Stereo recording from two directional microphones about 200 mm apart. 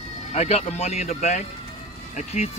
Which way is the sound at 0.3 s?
30° left (ahead or behind).